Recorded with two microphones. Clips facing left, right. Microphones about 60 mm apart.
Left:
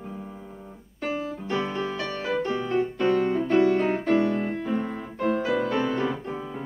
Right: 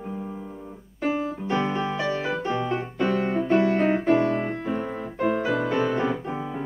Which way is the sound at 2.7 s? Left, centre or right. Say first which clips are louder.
Left 2 dB; centre.